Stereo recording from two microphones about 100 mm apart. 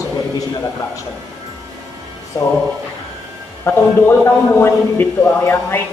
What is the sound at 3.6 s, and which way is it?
A man's voice, 25° left (ahead or behind).